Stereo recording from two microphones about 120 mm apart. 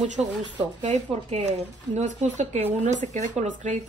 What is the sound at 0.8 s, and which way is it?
Speech, 70° right (ahead or behind).